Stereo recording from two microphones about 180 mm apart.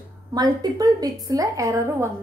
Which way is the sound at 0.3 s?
20° right (ahead or behind).